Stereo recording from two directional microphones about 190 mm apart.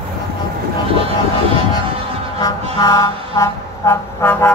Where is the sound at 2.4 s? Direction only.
20° left (ahead or behind).